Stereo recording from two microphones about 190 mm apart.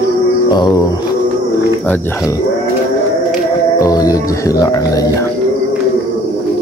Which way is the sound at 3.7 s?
20° left (ahead or behind).